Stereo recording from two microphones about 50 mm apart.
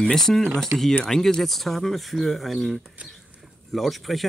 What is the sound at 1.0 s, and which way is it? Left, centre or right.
Speech, centre.